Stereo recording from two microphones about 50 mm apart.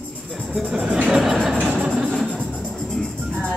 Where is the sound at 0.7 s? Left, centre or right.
Right.